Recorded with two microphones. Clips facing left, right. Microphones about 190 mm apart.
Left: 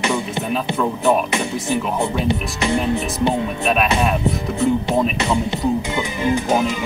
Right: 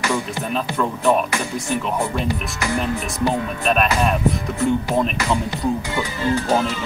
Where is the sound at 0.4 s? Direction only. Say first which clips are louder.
Left 2 dB; 5° left (ahead or behind).